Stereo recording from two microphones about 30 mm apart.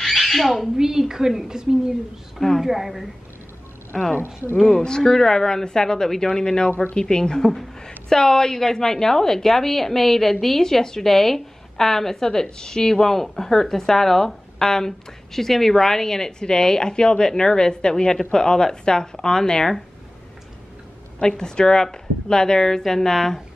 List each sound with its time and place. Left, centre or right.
0.0 s squawk: centre
0.7 s a woman's voice: centre
2.6 s a woman's voice: centre
3.9 s a woman's voice: centre
21.2 s a woman's voice: left